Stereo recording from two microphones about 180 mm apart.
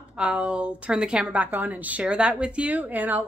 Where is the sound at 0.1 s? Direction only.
5° right (ahead or behind).